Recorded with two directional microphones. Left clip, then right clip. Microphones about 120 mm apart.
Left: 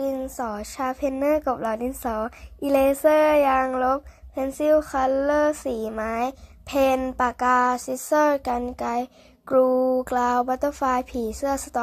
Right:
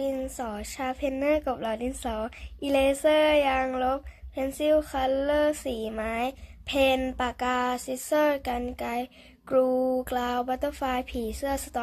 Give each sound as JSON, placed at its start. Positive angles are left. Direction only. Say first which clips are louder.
{"t": 0.0, "sound": "speech", "louder": "left 3 dB", "side_deg": 20}